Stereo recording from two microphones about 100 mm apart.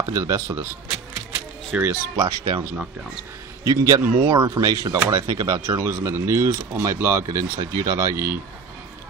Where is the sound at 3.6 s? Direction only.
35° right (ahead or behind).